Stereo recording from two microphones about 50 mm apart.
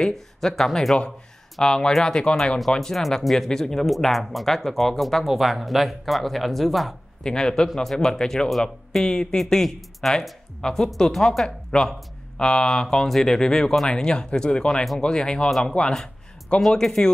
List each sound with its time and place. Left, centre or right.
0.0 s speech: centre
7.2 s speech: centre
8.5 s speech: centre